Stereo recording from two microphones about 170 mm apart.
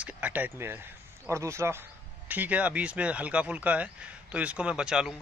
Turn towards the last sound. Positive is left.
turn(degrees=-5)  # may be behind; listen again after turning